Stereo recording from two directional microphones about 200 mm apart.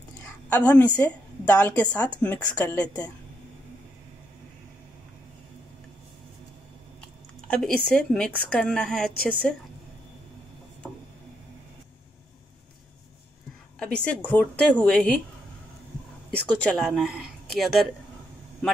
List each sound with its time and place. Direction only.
0.5 s a woman's voice: 10° left (ahead or behind)
7.4 s speech: 5° left (ahead or behind)
13.7 s speech: 5° left (ahead or behind)
16.4 s speech: 5° left (ahead or behind)